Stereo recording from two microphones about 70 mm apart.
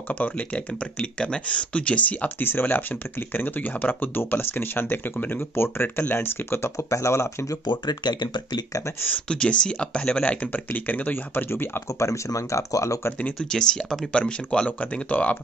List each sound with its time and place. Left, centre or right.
0.1 s speech: left
7.6 s speech: left
9.0 s speech: centre; by 12.1 s left
12.1 s speech: left
13.4 s speech: centre